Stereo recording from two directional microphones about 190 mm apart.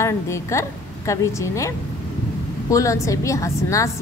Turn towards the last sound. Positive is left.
turn(degrees=15)  # may be behind; listen again after turning